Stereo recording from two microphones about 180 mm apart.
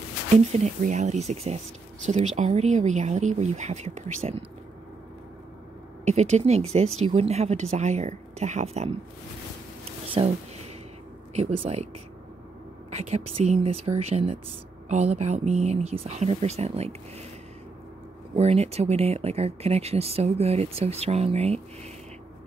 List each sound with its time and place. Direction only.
0.5 s speech: 40° right (ahead or behind)
6.0 s speech: 40° right (ahead or behind)
10.2 s speech: 30° right (ahead or behind)
11.3 s speech: 35° right (ahead or behind)
12.9 s speech: 35° right (ahead or behind)
18.3 s speech: 35° right (ahead or behind)